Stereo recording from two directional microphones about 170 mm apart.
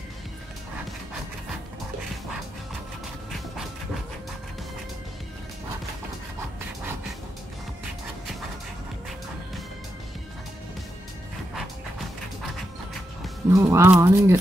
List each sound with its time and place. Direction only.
3.3 s music: centre (ahead or behind)
13.5 s speech: 20° right (ahead or behind)